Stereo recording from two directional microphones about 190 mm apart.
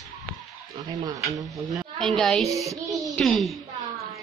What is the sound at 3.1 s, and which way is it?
Speech, centre (ahead or behind).